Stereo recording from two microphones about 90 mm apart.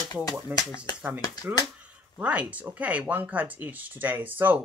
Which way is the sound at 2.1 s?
15° right (ahead or behind).